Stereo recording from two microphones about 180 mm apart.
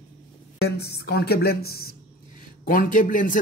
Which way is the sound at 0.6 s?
65° left (ahead or behind).